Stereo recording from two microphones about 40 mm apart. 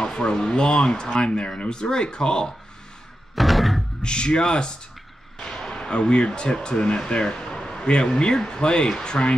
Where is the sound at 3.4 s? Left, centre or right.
Centre.